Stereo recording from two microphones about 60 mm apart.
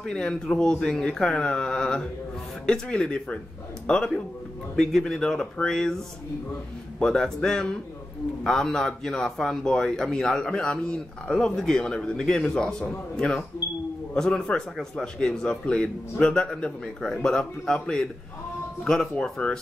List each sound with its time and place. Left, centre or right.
0.0 s a man's voice: centre
7.2 s a man's voice: centre
19.1 s a man's voice: centre